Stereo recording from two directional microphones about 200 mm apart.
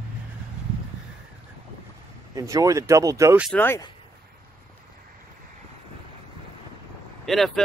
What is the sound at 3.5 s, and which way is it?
Speech, 10° left (ahead or behind).